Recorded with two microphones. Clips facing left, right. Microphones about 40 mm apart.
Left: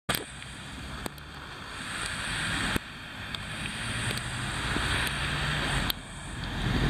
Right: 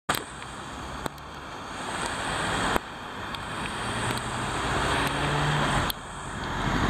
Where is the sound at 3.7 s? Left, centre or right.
Centre.